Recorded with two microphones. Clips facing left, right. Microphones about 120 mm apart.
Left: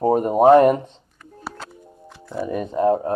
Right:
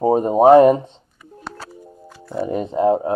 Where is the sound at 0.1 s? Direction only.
25° right (ahead or behind).